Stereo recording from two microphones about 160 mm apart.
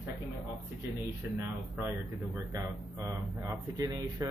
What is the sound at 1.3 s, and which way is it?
Speech, 15° right (ahead or behind).